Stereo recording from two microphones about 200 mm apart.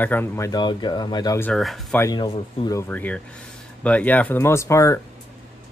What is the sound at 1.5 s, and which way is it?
Speech, centre (ahead or behind).